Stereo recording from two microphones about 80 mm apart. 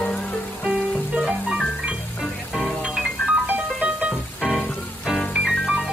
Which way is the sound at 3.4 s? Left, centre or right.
Centre.